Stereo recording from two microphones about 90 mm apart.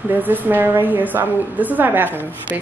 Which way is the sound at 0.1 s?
20° right (ahead or behind).